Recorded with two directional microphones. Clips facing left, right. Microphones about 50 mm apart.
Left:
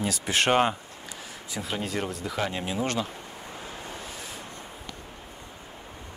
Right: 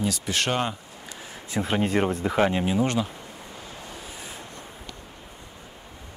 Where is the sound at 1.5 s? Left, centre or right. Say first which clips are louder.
Right 7 dB; right.